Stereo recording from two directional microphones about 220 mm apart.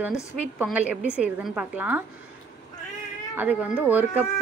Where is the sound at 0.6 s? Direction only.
5° right (ahead or behind).